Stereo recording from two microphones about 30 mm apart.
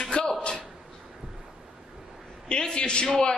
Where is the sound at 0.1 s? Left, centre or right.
Left.